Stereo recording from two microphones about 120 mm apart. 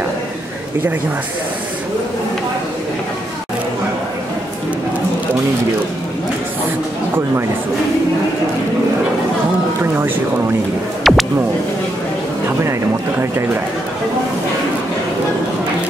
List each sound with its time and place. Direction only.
9.8 s speech: 20° right (ahead or behind)
11.1 s music: centre (ahead or behind)